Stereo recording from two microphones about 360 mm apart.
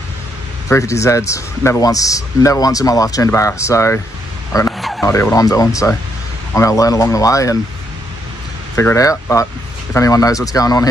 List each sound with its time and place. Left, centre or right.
0.7 s speech: centre
8.7 s speech: centre